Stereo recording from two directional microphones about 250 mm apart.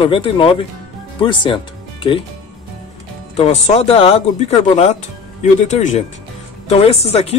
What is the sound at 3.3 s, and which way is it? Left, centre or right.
Speech, left.